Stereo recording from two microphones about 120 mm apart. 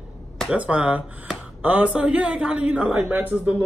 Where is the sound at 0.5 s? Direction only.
10° right (ahead or behind).